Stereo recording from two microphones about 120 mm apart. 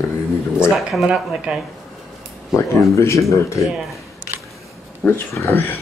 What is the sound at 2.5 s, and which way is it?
Speech, 25° left (ahead or behind).